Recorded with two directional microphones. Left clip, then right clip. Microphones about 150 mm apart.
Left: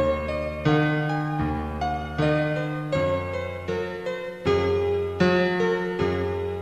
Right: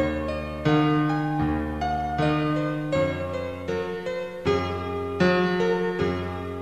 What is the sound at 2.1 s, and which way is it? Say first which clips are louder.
Music: left 1 dB; 15° left (ahead or behind).